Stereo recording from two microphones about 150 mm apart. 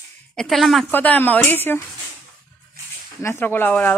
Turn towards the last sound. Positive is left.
turn(degrees=10)  # may be behind; listen again after turning